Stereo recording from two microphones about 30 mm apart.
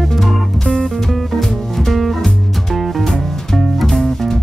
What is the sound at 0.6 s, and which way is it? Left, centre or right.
Music, left.